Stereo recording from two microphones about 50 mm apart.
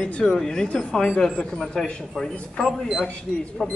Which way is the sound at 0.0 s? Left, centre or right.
Centre.